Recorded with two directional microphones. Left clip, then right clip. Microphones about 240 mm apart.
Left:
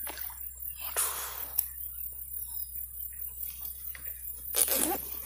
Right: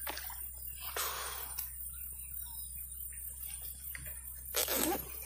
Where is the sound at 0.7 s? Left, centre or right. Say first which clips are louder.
Left 2 dB; left.